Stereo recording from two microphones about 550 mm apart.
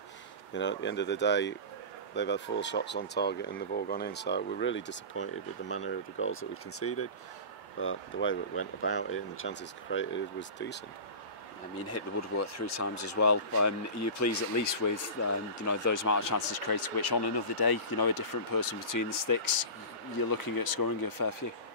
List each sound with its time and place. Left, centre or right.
0.5 s speech: centre
11.9 s speech: left